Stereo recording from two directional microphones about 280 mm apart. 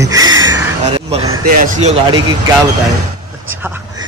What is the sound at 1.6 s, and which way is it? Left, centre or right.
Speech, right.